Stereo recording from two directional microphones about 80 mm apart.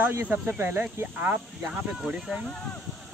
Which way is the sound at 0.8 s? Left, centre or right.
Centre.